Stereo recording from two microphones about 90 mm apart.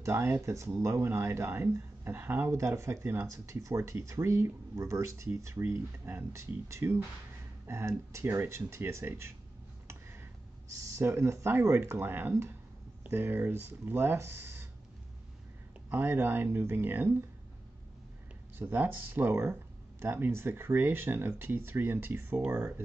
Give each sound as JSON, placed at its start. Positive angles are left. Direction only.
{"t": 0.0, "sound": "speech", "side_deg": -30}
{"t": 11.0, "sound": "speech", "side_deg": -30}
{"t": 15.9, "sound": "speech", "side_deg": -25}
{"t": 18.6, "sound": "speech", "side_deg": -20}